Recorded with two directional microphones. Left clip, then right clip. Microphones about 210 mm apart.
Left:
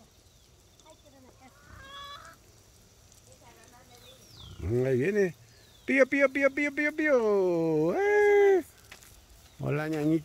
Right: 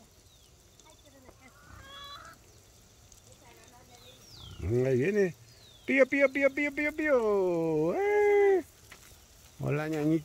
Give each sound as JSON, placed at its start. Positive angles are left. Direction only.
{"t": 1.8, "sound": "fowl", "side_deg": 30}
{"t": 4.6, "sound": "speech", "side_deg": 5}